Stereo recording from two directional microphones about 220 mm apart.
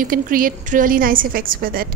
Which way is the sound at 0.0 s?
40° right (ahead or behind).